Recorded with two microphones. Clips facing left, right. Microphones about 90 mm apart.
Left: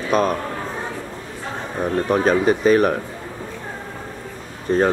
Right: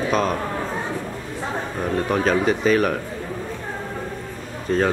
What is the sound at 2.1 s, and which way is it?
Speech, 15° left (ahead or behind).